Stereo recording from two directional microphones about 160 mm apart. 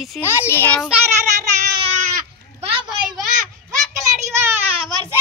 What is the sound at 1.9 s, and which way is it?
Goat, 55° right (ahead or behind).